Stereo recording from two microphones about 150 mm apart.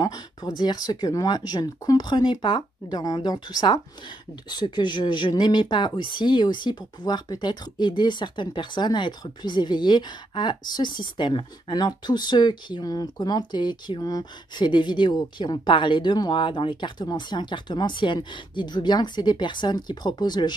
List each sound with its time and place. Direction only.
0.0 s speech: 25° left (ahead or behind)